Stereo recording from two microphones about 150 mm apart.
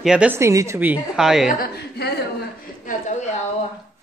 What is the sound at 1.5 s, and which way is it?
Speech, 85° left.